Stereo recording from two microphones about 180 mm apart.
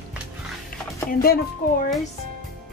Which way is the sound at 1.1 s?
55° left (ahead or behind).